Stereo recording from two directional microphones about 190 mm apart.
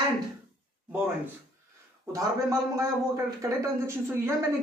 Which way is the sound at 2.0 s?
15° right (ahead or behind).